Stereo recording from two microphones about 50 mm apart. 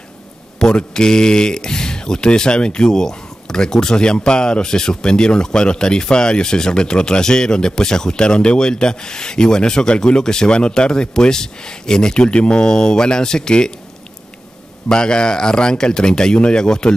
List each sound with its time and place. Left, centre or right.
0.6 s speech: centre
14.9 s speech: centre